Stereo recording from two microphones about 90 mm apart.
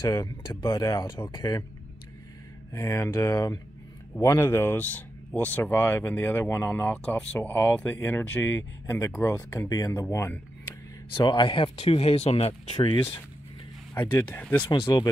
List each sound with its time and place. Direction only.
0.1 s speech: 35° left (ahead or behind)
2.7 s speech: 35° left (ahead or behind)
11.2 s speech: 65° left (ahead or behind); by 12.8 s 90° left
13.9 s speech: 20° left (ahead or behind)
14.7 s speech: 65° left (ahead or behind)